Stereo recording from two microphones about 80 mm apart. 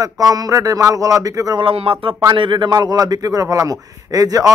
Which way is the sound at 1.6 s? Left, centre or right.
Right.